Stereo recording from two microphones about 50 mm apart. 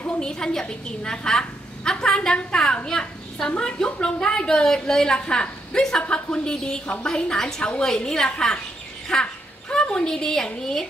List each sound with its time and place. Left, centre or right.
0.2 s a child's voice: centre